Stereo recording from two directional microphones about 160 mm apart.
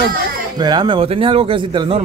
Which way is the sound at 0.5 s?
25° right (ahead or behind).